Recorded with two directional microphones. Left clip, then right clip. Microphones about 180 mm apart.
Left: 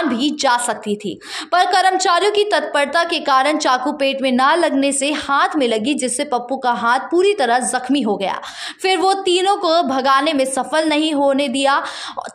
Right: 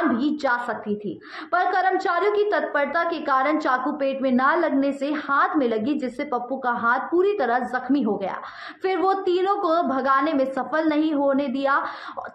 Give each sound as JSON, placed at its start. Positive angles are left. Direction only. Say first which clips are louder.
{"t": 0.4, "sound": "a woman's voice", "louder": "left 7 dB", "side_deg": 30}